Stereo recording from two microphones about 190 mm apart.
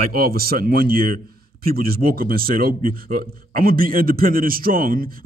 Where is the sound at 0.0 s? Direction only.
50° right (ahead or behind).